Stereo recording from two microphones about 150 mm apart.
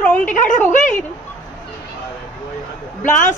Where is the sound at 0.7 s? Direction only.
55° left (ahead or behind).